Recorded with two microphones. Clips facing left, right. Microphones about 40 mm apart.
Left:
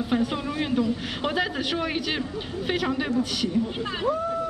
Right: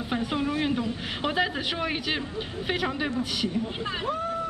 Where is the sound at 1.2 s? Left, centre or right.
Centre.